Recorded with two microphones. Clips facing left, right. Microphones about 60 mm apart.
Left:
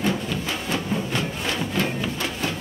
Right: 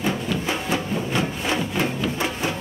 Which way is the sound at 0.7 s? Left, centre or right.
Centre.